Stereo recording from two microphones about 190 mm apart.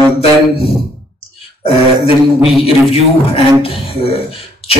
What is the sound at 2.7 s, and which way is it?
A man's voice, 30° left (ahead or behind).